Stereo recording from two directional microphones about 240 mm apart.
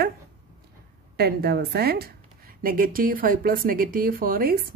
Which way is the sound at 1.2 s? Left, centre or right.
Right.